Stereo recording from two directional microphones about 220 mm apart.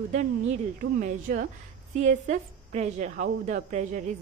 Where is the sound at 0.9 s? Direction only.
40° right (ahead or behind).